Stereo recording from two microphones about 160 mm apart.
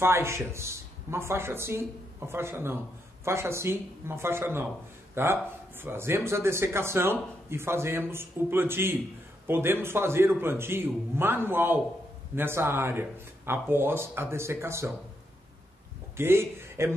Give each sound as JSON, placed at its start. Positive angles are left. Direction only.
{"t": 0.0, "sound": "speech", "side_deg": -15}
{"t": 16.2, "sound": "a man's voice", "side_deg": -15}